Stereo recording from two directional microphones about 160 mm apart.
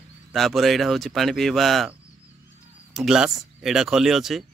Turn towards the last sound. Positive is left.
turn(degrees=0)  # may be behind; listen again after turning